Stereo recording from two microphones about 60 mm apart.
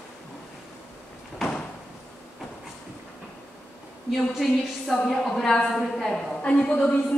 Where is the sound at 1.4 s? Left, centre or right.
Centre.